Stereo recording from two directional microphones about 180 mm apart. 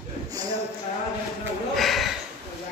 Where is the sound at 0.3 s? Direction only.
20° right (ahead or behind).